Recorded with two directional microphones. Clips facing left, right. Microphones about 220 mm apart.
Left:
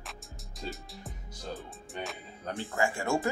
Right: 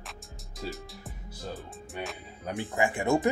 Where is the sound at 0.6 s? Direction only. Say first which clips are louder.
Right 3 dB; centre (ahead or behind).